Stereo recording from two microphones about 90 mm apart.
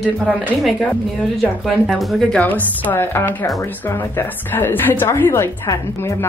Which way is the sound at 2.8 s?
25° left (ahead or behind).